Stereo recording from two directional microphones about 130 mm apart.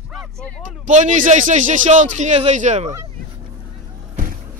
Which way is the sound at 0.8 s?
70° right (ahead or behind).